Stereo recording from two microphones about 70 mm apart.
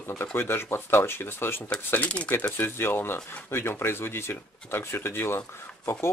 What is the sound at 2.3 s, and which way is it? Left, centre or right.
Speech, left.